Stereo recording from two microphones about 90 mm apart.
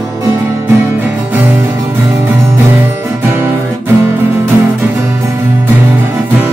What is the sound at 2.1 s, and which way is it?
Music, 30° right (ahead or behind).